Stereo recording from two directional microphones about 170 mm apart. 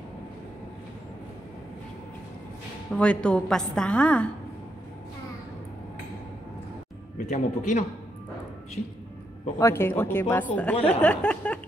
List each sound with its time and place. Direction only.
2.9 s a woman's voice: 5° left (ahead or behind)
7.2 s a man's voice: 45° left (ahead or behind)
9.6 s a woman's voice: 15° left (ahead or behind)